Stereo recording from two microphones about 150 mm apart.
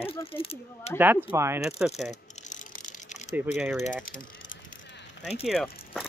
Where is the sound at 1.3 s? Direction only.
20° right (ahead or behind).